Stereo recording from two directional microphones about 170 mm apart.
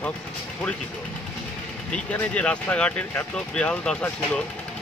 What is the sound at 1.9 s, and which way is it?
Speech, 5° left (ahead or behind).